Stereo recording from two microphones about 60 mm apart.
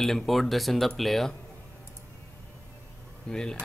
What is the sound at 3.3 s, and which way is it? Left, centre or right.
Speech, centre.